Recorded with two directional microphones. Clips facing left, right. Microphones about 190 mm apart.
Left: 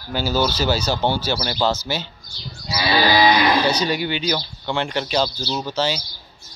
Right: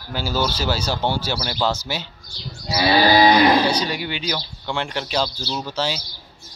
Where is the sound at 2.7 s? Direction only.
40° right (ahead or behind).